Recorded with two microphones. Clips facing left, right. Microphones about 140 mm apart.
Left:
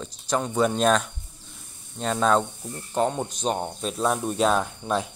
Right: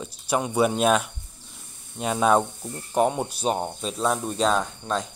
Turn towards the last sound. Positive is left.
turn(degrees=5)  # may be behind; listen again after turning